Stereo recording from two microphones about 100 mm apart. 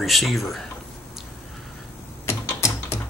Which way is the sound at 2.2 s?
25° left (ahead or behind).